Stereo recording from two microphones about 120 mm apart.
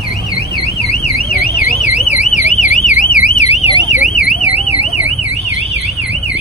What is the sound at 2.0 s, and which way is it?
Alarm, 85° left.